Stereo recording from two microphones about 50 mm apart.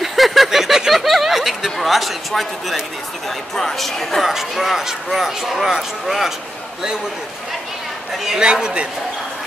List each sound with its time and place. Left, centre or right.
0.0 s a sound: centre
3.5 s a woman's voice: centre
4.3 s speech: centre
8.3 s speech: centre